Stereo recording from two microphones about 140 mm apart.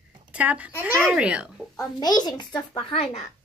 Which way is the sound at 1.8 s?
30° left (ahead or behind).